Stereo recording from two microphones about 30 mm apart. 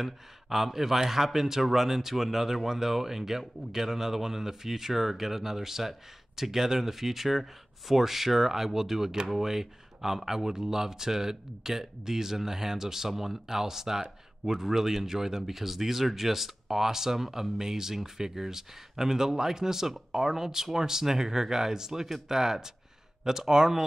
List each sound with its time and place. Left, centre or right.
0.0 s a man's voice: centre